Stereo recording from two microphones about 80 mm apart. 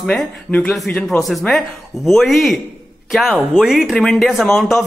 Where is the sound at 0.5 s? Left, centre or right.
Centre.